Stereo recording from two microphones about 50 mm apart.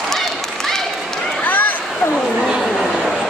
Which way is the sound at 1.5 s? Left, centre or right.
Left.